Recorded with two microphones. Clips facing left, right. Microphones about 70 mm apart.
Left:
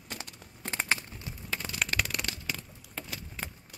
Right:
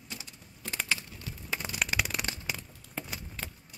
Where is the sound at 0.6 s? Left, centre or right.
Left.